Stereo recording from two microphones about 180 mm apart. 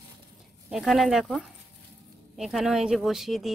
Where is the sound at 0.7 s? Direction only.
Centre (ahead or behind).